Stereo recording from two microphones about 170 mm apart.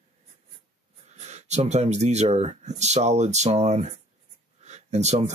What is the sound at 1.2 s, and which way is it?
Speech, 40° right (ahead or behind).